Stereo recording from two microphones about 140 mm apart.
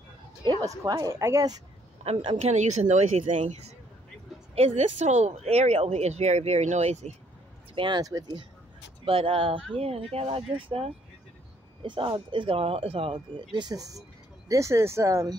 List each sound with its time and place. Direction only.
0.5 s speech: 25° right (ahead or behind)
2.0 s speech: 45° right (ahead or behind)
7.7 s speech: 35° right (ahead or behind)
9.0 s speech: 40° right (ahead or behind); by 15.3 s 20° right (ahead or behind)